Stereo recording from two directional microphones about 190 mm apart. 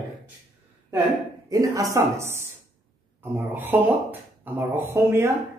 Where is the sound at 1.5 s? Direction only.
15° right (ahead or behind).